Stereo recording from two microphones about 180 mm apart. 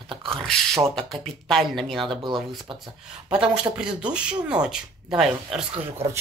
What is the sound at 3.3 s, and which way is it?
Speech, 5° right (ahead or behind).